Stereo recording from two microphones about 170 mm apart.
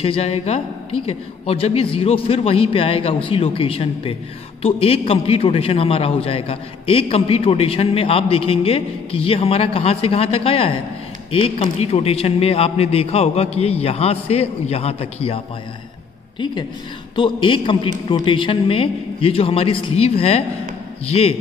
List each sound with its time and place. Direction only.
0.0 s a man's voice: 35° left (ahead or behind)
17.1 s a man's voice: 30° left (ahead or behind)